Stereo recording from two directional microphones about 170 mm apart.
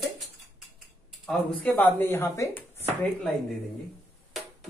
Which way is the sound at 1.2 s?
10° left (ahead or behind).